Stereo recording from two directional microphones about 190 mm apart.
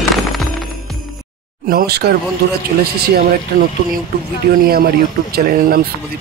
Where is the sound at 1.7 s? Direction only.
55° right (ahead or behind).